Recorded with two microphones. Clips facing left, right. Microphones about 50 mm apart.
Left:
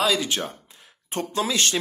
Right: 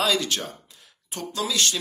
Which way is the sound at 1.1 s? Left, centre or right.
Left.